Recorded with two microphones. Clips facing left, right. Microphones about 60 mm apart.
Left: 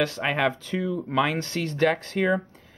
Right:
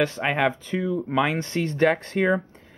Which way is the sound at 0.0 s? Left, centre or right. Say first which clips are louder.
Right 2 dB; centre.